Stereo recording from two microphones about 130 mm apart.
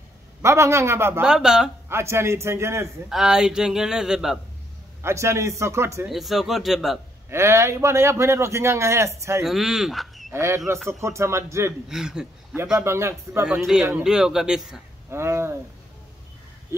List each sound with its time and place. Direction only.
0.4 s a man's voice: 20° right (ahead or behind)
1.2 s a man's voice: 5° right (ahead or behind)
1.9 s a man's voice: 20° right (ahead or behind)
3.1 s a man's voice: 5° right (ahead or behind)
5.0 s a man's voice: 20° right (ahead or behind)
6.0 s a man's voice: centre (ahead or behind)
7.2 s a man's voice: 20° right (ahead or behind)
9.4 s speech: centre (ahead or behind)
10.3 s a man's voice: 20° right (ahead or behind)
11.9 s a man's voice: 5° right (ahead or behind)
12.8 s a man's voice: 20° right (ahead or behind)
13.7 s a man's voice: 5° right (ahead or behind)
15.0 s speech: 20° right (ahead or behind)